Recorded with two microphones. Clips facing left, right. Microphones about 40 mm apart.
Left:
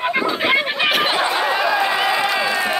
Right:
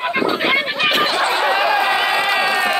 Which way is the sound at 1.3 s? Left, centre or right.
Right.